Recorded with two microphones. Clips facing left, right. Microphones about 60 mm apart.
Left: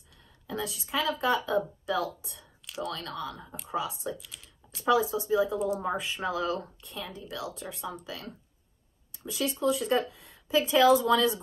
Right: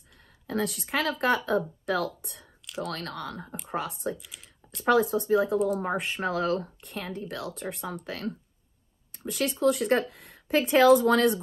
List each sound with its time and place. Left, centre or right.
0.2 s a woman's voice: right
2.9 s a woman's voice: right
9.6 s speech: right
10.7 s speech: right